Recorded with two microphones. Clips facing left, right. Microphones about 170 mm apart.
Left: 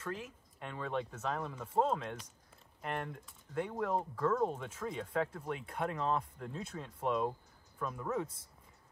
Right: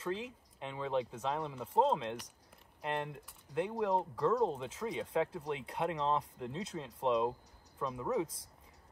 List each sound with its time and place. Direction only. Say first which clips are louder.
0.0 s speech: right 4 dB; 25° right (ahead or behind)